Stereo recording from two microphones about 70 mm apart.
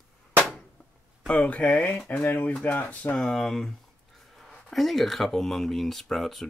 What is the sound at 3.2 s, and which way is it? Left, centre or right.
Speech, centre.